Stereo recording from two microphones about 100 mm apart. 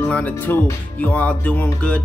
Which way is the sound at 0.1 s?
15° left (ahead or behind).